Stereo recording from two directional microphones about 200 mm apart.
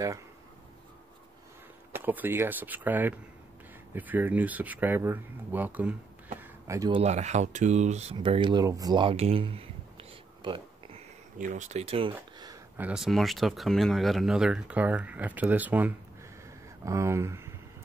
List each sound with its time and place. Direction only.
1.9 s speech: 10° right (ahead or behind)
7.0 s speech: 35° right (ahead or behind)
11.3 s speech: 40° right (ahead or behind); by 12.5 s 25° right (ahead or behind)
12.7 s speech: 5° right (ahead or behind)